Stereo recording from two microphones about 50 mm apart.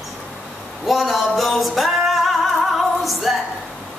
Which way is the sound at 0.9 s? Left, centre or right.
Centre.